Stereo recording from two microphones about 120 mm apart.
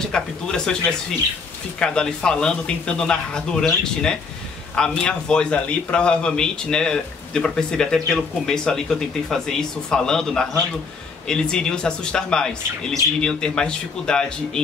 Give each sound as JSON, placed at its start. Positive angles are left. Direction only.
{"t": 0.0, "sound": "a man's voice", "side_deg": 5}
{"t": 1.8, "sound": "a man's voice", "side_deg": 5}